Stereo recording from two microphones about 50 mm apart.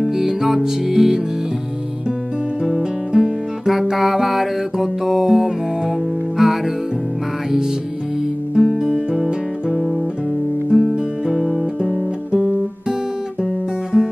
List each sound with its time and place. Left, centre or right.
0.0 s music: centre
2.6 s music: centre
8.5 s guitar: centre
12.3 s guitar: right
13.9 s music: right